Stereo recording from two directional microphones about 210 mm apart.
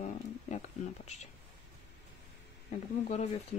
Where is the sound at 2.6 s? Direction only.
30° left (ahead or behind).